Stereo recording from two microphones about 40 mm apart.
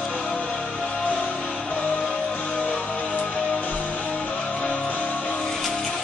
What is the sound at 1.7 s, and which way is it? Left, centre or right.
Music, left.